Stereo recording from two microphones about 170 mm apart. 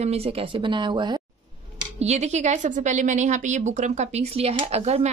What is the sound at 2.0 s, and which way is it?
A woman's voice, 40° right (ahead or behind).